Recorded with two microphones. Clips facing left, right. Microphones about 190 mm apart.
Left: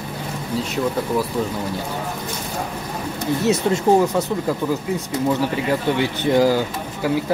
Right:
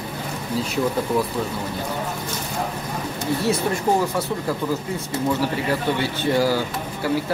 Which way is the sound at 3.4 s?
20° left (ahead or behind).